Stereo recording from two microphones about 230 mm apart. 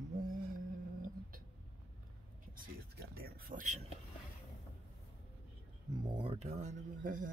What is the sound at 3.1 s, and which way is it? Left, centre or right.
Speech, right.